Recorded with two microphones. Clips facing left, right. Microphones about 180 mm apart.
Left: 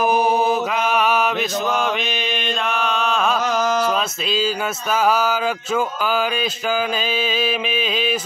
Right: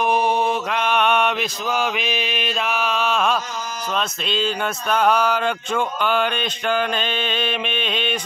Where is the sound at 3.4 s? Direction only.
90° left.